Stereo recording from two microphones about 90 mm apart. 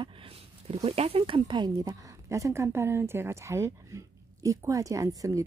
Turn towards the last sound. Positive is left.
turn(degrees=-40)  # may be behind; listen again after turning